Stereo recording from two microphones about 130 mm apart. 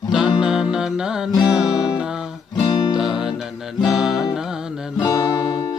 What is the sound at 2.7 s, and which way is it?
Music, 30° left (ahead or behind).